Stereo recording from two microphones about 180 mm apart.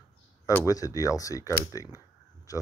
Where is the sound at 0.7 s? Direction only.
20° left (ahead or behind).